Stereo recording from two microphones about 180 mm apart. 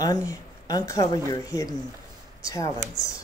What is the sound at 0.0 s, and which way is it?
Speech, 20° left (ahead or behind).